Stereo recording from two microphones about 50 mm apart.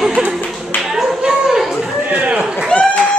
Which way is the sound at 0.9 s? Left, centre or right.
Centre.